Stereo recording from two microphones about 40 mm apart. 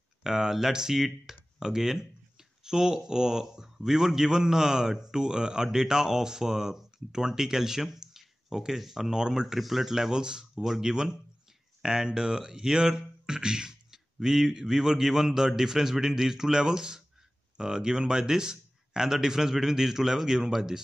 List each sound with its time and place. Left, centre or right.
0.2 s speech: centre
9.1 s speech: centre
9.6 s speech: centre